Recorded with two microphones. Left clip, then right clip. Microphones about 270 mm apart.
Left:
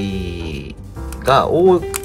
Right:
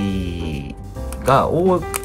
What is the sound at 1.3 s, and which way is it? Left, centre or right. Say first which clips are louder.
Speech: left 3 dB; centre.